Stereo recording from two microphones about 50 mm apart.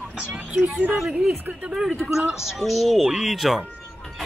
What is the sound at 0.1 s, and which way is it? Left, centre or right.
Speech, centre.